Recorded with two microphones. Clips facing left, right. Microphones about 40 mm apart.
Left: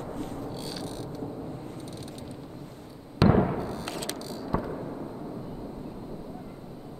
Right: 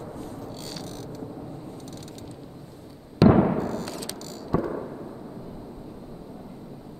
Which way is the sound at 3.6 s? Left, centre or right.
Centre.